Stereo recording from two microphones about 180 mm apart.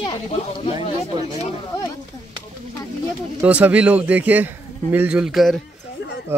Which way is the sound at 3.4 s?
5° right (ahead or behind).